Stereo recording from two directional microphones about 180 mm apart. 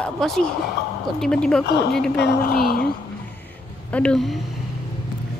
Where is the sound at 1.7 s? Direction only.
60° left (ahead or behind).